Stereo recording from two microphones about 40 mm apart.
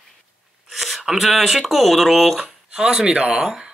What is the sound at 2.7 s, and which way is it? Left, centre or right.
Speech, centre.